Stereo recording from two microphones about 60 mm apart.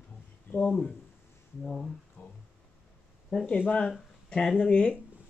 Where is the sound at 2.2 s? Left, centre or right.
Left.